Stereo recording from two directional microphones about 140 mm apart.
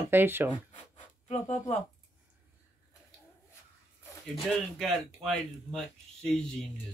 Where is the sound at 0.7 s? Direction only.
55° left (ahead or behind).